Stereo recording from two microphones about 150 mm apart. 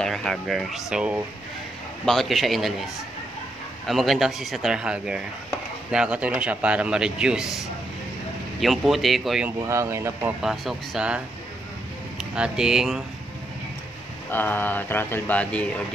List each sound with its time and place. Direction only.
0.0 s speech: 5° left (ahead or behind)
3.8 s a man's voice: centre (ahead or behind)
9.7 s a man's voice: 20° right (ahead or behind)
10.4 s speech: centre (ahead or behind)
14.3 s mantra: 15° left (ahead or behind)